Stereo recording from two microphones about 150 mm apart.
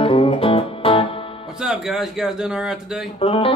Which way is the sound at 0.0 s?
40° left (ahead or behind).